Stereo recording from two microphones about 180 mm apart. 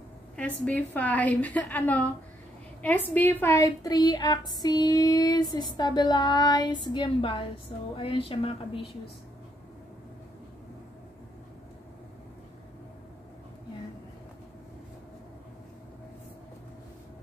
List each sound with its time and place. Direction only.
0.4 s a woman's voice: 10° left (ahead or behind); by 8.5 s 30° left (ahead or behind)